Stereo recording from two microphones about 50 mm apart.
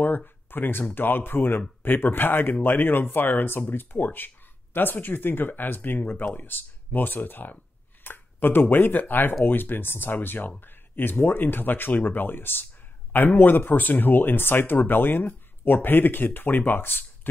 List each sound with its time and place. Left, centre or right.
0.0 s speech: left